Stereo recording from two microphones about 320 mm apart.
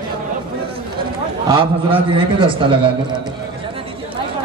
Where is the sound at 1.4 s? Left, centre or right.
Centre.